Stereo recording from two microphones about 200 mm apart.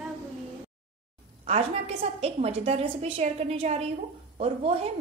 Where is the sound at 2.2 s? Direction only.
30° right (ahead or behind).